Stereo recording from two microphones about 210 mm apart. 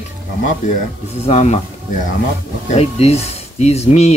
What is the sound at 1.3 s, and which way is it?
Speech, 30° left (ahead or behind).